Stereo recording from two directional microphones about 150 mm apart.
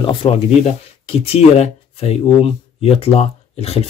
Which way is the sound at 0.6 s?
45° left (ahead or behind).